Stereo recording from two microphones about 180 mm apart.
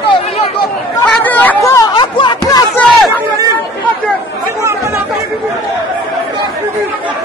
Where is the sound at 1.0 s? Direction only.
5° left (ahead or behind); by 2.6 s 25° left (ahead or behind).